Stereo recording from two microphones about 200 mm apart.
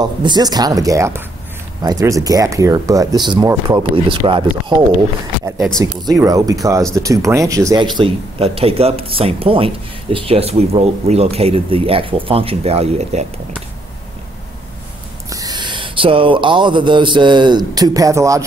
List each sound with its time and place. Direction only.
0.0 s speech: 20° right (ahead or behind)
5.8 s speech: 15° right (ahead or behind)
8.0 s speech: 30° right (ahead or behind)
15.2 s speech: 20° right (ahead or behind)